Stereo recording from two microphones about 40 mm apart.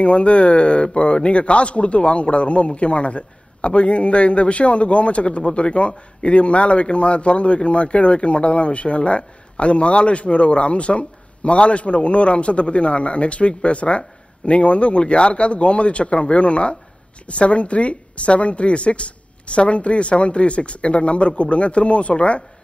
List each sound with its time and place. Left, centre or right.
0.0 s a man's voice: left